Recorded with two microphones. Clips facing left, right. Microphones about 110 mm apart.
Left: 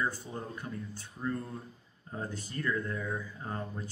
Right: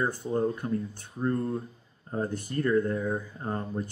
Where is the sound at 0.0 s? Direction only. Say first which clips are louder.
Right 9 dB; 50° right (ahead or behind).